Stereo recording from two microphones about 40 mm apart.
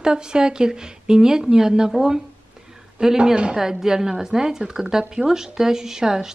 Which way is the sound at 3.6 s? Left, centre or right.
Centre.